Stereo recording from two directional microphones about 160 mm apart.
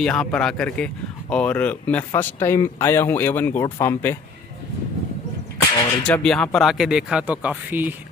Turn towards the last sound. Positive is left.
turn(degrees=-10)  # may be behind; listen again after turning